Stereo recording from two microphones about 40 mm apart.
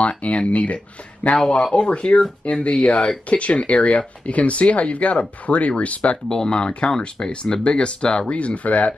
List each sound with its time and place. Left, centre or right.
0.0 s speech: left
1.4 s speech: centre
1.7 s speech: left
6.2 s speech: centre; by 8.9 s left